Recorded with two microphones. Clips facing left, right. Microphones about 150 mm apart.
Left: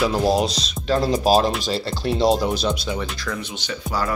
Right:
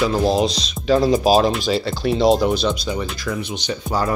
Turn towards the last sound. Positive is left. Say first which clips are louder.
# right 3 dB
turn(degrees=-25)  # may be behind; listen again after turning